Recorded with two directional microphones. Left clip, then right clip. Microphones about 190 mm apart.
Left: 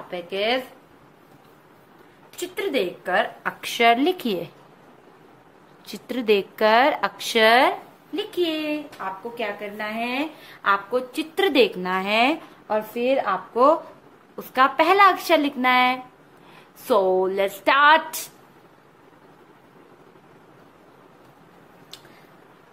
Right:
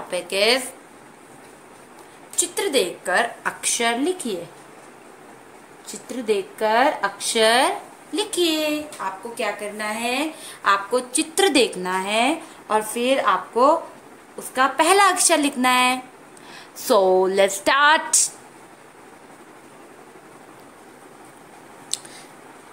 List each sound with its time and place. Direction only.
0.1 s a woman's voice: 10° right (ahead or behind)
2.5 s speech: 10° left (ahead or behind)
5.9 s a woman's voice: 15° left (ahead or behind)
12.6 s a woman's voice: 10° right (ahead or behind)
14.5 s a woman's voice: 5° left (ahead or behind)
21.9 s a sound: 5° right (ahead or behind)